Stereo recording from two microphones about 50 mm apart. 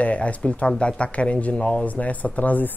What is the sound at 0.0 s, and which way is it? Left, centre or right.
Speech, left.